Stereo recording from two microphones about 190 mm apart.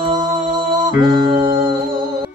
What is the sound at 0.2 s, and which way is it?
Music, 25° right (ahead or behind).